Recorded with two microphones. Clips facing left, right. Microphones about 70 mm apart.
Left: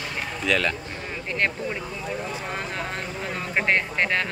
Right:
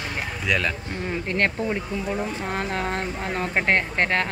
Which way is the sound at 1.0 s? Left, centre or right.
Right.